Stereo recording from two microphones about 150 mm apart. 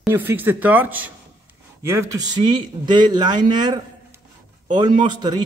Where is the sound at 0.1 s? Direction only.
15° right (ahead or behind).